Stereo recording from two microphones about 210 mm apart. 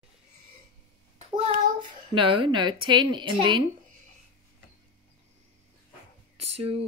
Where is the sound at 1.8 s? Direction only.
25° right (ahead or behind).